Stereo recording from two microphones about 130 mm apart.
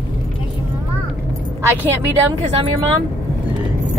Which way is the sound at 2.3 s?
50° right (ahead or behind).